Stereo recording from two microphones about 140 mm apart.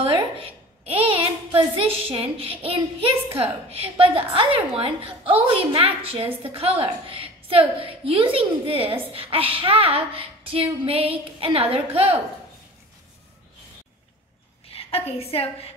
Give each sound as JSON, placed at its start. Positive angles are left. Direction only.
{"t": 0.0, "sound": "a woman's voice", "side_deg": -40}
{"t": 14.7, "sound": "a woman's voice", "side_deg": 45}